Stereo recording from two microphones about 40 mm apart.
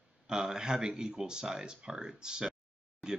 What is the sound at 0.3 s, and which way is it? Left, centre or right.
Speech, centre.